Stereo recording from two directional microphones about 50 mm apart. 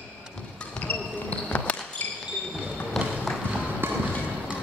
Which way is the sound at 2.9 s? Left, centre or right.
Centre.